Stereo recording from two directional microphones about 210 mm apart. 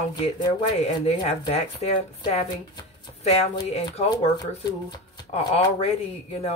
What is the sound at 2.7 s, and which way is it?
Chopping, 30° left (ahead or behind).